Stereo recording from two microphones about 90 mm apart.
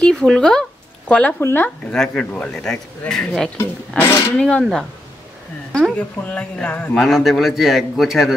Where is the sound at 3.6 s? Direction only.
30° left (ahead or behind).